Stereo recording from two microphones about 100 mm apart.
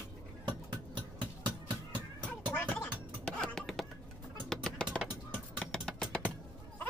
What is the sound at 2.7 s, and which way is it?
Music, 10° left (ahead or behind).